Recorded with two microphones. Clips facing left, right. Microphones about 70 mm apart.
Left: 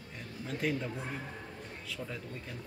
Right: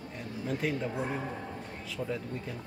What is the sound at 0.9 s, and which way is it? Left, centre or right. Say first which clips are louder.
Speech: right 6 dB; right.